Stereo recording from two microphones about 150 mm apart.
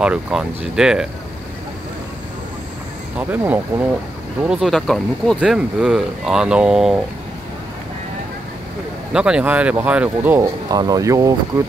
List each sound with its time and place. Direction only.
0.0 s speech: 5° right (ahead or behind)
3.2 s speech: 10° right (ahead or behind)
9.1 s speech: 5° right (ahead or behind)
10.7 s speech: 25° right (ahead or behind)